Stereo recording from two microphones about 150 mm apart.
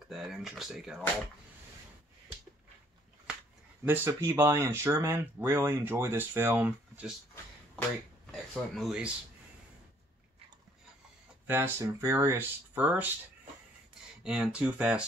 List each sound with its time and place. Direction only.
0.1 s speech: centre (ahead or behind)
3.8 s speech: 15° right (ahead or behind)
8.7 s speech: 5° right (ahead or behind)
11.4 s speech: 15° right (ahead or behind)
14.2 s speech: 5° right (ahead or behind)